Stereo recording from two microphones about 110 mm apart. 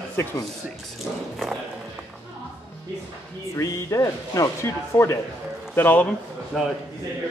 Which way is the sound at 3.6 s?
30° left (ahead or behind).